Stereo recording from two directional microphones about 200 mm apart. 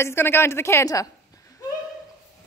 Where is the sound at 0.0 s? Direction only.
10° left (ahead or behind).